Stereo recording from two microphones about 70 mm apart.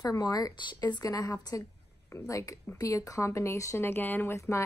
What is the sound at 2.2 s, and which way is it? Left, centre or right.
A woman's voice, left.